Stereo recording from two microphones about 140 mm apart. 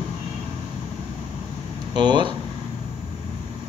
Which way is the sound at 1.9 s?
30° right (ahead or behind).